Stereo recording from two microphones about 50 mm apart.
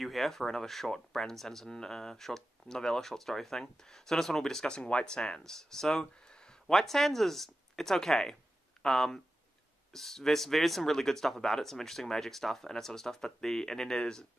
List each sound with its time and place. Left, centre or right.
0.0 s speech: centre
6.7 s speech: centre